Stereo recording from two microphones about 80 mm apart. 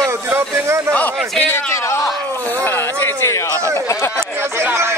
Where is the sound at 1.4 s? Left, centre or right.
Left.